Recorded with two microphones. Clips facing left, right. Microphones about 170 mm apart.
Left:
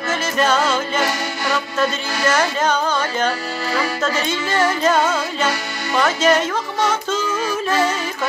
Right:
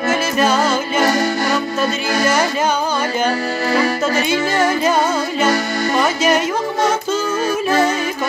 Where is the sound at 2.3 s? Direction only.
10° right (ahead or behind).